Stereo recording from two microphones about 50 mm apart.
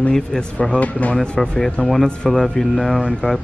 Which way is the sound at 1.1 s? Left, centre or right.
Centre.